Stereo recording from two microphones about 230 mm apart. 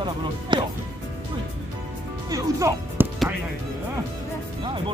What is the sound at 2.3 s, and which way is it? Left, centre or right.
Speech, centre.